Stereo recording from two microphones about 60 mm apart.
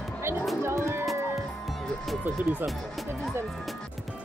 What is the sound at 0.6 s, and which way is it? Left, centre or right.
Speech, right.